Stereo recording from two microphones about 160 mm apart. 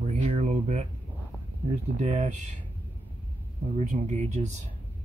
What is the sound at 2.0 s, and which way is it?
Speech, 45° right (ahead or behind).